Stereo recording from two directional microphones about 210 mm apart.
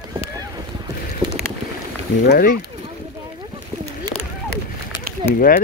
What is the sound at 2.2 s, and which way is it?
Speech, 45° left (ahead or behind).